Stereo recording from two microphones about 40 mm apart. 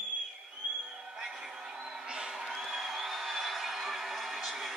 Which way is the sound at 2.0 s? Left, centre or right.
Right.